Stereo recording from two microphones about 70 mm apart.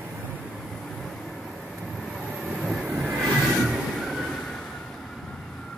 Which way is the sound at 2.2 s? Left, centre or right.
Right.